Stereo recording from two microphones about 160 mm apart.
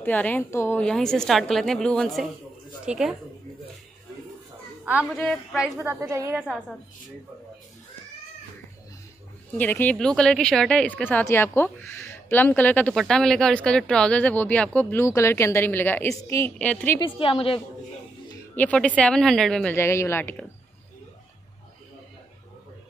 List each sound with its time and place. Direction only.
0.0 s a woman's voice: 10° left (ahead or behind)
5.1 s a woman's voice: 5° left (ahead or behind)
5.9 s a woman's voice: 20° right (ahead or behind)
6.3 s a woman's voice: centre (ahead or behind)
9.6 s speech: 10° left (ahead or behind)
17.0 s a woman's voice: 35° left (ahead or behind)
18.6 s speech: 10° left (ahead or behind)